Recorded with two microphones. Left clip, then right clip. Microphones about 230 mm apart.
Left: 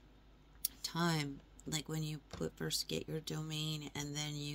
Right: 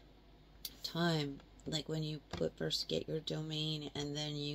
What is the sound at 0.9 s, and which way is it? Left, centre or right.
Speech, left.